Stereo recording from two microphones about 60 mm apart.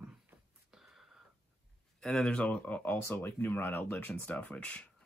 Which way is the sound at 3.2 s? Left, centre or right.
Left.